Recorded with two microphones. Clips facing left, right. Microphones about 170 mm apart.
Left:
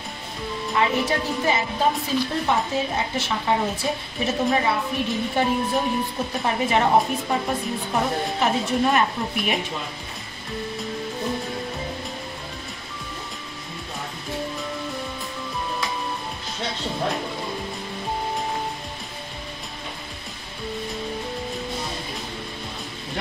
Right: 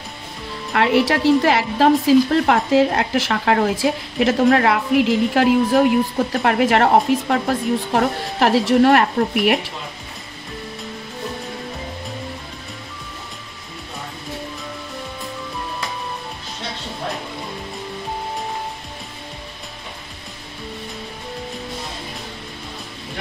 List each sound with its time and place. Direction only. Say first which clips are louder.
0.7 s a woman's voice: right 6 dB; 85° right